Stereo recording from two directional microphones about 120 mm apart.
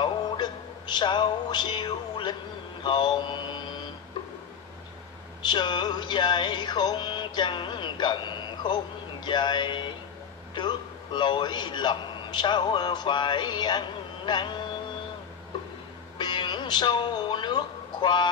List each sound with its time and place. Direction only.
0.0 s music: 35° left (ahead or behind)
2.8 s mantra: 40° left (ahead or behind)
5.5 s a man's voice: 40° left (ahead or behind)
11.1 s a man's voice: 40° left (ahead or behind)
16.2 s meow: 40° left (ahead or behind)